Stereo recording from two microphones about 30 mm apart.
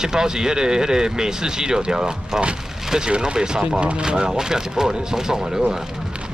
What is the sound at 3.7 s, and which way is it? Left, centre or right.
Speech, right.